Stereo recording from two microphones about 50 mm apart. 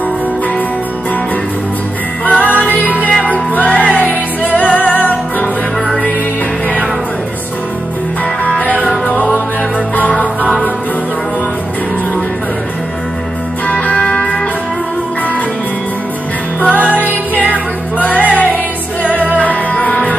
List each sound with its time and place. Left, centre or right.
2.2 s music: left
8.5 s music: left
13.7 s music: left
16.6 s music: left